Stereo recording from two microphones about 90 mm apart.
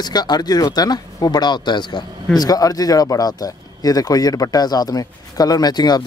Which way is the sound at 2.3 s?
45° left (ahead or behind).